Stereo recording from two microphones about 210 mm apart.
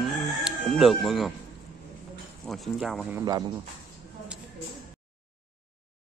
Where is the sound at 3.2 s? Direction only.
20° right (ahead or behind).